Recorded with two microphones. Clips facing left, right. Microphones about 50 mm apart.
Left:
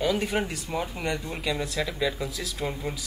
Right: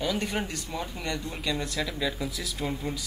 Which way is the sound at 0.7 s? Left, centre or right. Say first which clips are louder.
Left 5 dB; centre.